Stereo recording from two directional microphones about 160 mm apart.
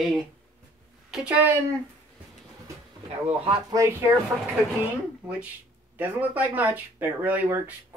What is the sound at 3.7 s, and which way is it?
Speech, 15° right (ahead or behind).